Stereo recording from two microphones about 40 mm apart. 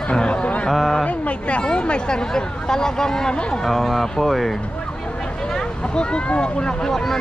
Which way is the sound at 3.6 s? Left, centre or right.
Centre.